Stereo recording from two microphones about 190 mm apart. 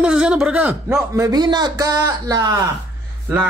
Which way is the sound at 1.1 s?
20° right (ahead or behind).